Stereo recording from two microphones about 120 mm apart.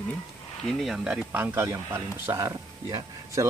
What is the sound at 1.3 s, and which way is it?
Speech, 20° right (ahead or behind).